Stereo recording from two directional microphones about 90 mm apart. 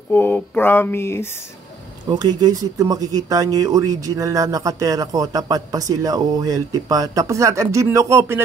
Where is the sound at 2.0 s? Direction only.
50° right (ahead or behind).